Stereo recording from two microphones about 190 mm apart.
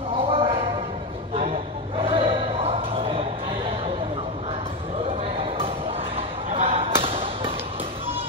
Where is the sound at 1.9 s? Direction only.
30° right (ahead or behind).